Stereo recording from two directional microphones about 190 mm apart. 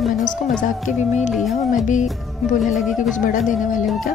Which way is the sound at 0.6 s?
40° left (ahead or behind).